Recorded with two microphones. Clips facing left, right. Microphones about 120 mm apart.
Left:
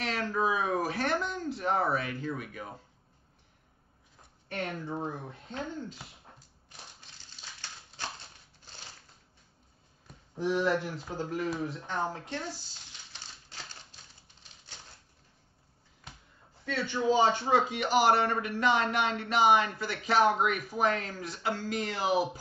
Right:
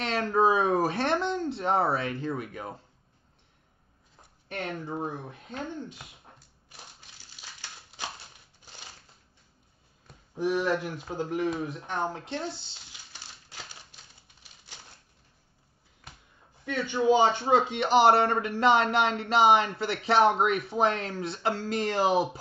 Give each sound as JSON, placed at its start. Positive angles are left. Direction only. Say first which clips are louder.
{"t": 0.0, "sound": "a sound", "louder": "right 6 dB", "side_deg": -30}
{"t": 4.6, "sound": "speech", "louder": "right 1 dB", "side_deg": -15}
{"t": 10.3, "sound": "speech", "louder": "right 1 dB", "side_deg": -15}
{"t": 13.1, "sound": "typewriter", "louder": "right 1 dB", "side_deg": -10}
{"t": 16.6, "sound": "speech", "louder": "right 4 dB", "side_deg": -15}